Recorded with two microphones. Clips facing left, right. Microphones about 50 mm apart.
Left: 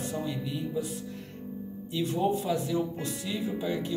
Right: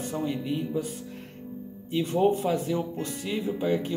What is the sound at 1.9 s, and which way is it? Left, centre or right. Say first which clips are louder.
Speech: right 4 dB; right.